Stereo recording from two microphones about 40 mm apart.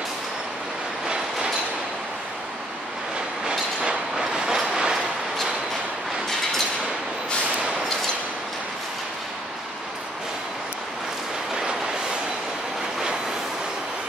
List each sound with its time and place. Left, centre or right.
3.5 s train: centre